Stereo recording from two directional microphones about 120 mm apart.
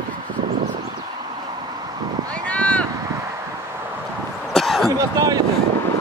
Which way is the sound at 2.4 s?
10° left (ahead or behind).